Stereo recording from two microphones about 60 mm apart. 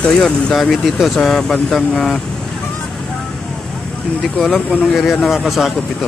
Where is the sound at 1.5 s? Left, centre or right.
Centre.